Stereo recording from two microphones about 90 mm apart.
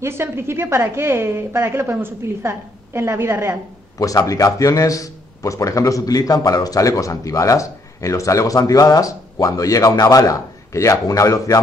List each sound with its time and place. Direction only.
0.0 s a woman's voice: 25° right (ahead or behind)
4.0 s a man's voice: 40° left (ahead or behind)